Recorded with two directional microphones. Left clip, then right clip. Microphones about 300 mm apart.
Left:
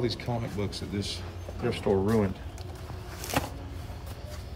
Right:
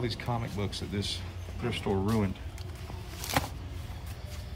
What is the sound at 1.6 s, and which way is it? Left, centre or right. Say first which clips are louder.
Speech: left 5 dB; right.